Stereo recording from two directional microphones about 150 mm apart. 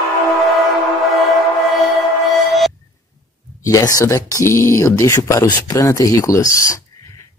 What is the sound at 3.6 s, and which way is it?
Speech, 20° left (ahead or behind).